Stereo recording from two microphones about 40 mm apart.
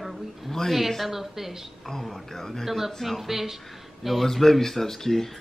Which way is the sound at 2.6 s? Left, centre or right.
Centre.